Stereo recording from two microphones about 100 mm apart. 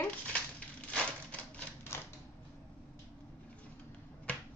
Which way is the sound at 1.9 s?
25° left (ahead or behind).